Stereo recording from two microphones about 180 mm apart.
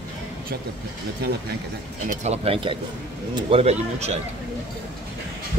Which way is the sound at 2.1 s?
35° right (ahead or behind).